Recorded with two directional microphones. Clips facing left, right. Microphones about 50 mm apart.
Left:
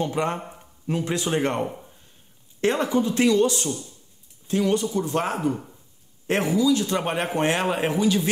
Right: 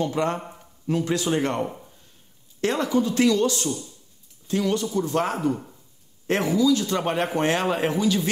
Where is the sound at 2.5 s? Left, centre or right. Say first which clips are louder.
Left 1 dB; left.